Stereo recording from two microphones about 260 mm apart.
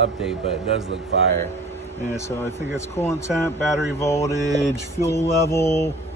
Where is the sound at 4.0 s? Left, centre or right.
Centre.